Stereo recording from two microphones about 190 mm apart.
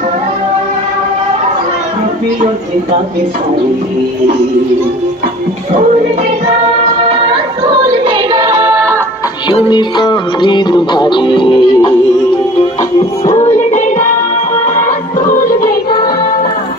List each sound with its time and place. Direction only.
8.0 s child singing: 25° right (ahead or behind)
9.5 s music: 25° left (ahead or behind)
13.4 s music: 40° left (ahead or behind)